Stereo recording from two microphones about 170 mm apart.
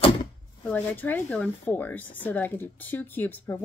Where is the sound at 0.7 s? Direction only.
10° left (ahead or behind).